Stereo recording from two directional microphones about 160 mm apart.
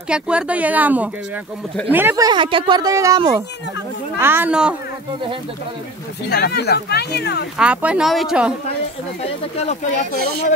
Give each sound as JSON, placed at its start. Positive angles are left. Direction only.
{"t": 0.1, "sound": "speech", "side_deg": -5}
{"t": 2.2, "sound": "a woman's voice", "side_deg": -30}
{"t": 6.2, "sound": "speech", "side_deg": 85}
{"t": 7.5, "sound": "speech", "side_deg": -5}
{"t": 9.2, "sound": "speech", "side_deg": 40}